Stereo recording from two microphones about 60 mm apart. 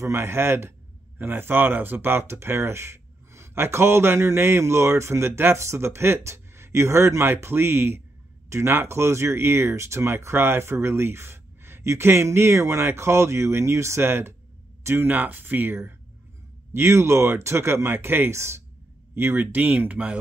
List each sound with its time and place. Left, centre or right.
0.0 s a man's voice: right
10.2 s a man's voice: right
14.8 s a sound: right
15.0 s speech: right
16.7 s a man's voice: right
18.3 s a man's voice: right
19.1 s speech: right